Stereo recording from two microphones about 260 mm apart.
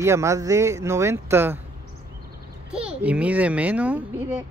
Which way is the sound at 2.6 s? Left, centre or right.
Centre.